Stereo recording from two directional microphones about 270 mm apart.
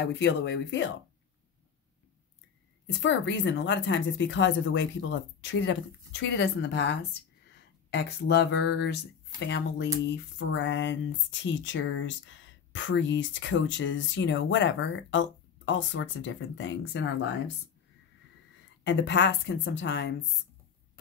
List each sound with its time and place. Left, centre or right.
0.0 s speech: left
3.0 s speech: left
18.9 s speech: left